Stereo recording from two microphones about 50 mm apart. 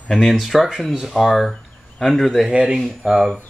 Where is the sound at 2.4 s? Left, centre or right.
Centre.